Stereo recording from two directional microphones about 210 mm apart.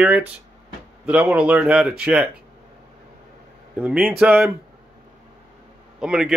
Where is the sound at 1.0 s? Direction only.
5° right (ahead or behind).